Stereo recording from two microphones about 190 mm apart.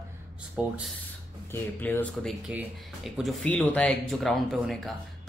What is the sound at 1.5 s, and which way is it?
Speech, 10° left (ahead or behind).